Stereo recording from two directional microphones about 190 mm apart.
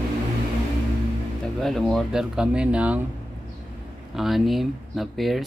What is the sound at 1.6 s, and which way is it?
Speech, centre (ahead or behind).